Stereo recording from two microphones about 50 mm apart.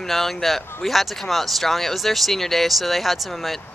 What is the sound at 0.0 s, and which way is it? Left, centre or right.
A man's voice, centre.